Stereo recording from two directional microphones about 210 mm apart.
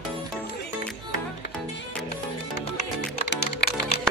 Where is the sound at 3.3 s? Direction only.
50° left (ahead or behind).